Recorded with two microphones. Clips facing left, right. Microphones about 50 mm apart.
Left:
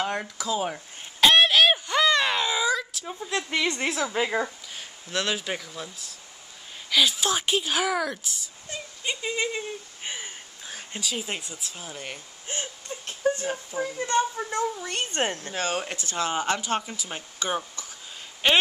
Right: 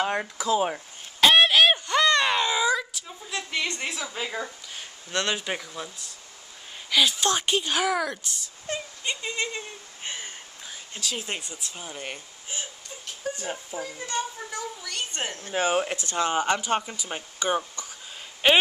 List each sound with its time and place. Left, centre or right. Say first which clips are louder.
0.0 s speech: right 2 dB; centre
1.2 s a sound: even; centre
3.1 s a woman's voice: left 4 dB; left
4.7 s speech: right 1 dB; centre
8.7 s a sound: right 6 dB; right
9.0 s speech: left 4 dB; centre
12.4 s a sound: left 4 dB; left
13.8 s a woman's voice: left 7 dB; left
15.5 s speech: right 4 dB; centre